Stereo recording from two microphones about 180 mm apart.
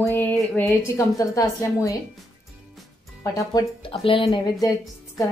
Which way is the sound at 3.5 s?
30° left (ahead or behind).